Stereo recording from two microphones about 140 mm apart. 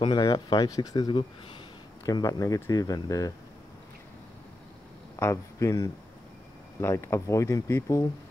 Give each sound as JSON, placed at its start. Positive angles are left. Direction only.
{"t": 0.0, "sound": "speech", "side_deg": 35}
{"t": 5.1, "sound": "a man's voice", "side_deg": 20}